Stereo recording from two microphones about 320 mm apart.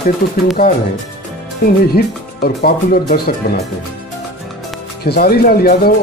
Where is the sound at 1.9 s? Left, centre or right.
Left.